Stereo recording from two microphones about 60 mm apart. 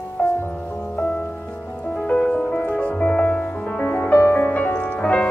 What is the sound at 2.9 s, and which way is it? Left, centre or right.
Music, centre.